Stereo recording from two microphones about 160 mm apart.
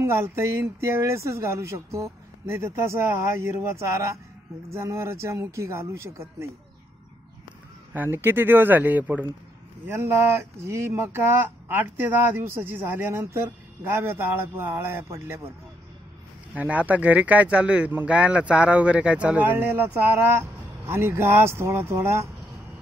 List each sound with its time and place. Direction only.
0.0 s speech: 15° right (ahead or behind)
7.9 s speech: 10° right (ahead or behind)
16.5 s speech: 10° right (ahead or behind)